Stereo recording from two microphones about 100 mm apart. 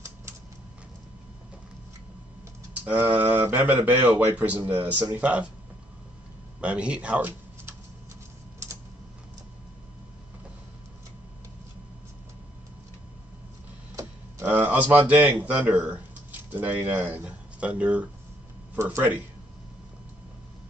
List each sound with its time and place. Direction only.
2.8 s speech: 15° right (ahead or behind)
6.6 s speech: 10° right (ahead or behind)
14.4 s speech: 20° right (ahead or behind)